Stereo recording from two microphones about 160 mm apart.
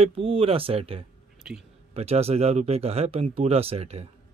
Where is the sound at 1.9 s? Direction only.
40° right (ahead or behind).